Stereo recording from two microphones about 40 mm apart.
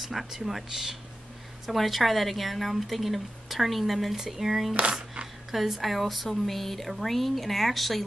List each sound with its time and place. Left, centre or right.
0.0 s speech: centre
4.9 s a sound: right
5.5 s speech: centre